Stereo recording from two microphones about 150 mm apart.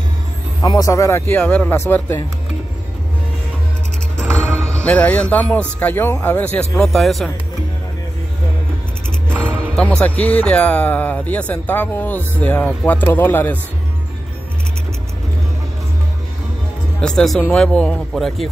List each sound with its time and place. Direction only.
0.6 s speech: 25° left (ahead or behind)
4.7 s speech: 10° left (ahead or behind)
9.3 s music: 15° right (ahead or behind)
9.8 s speech: 10° left (ahead or behind)
17.0 s speech: 5° left (ahead or behind)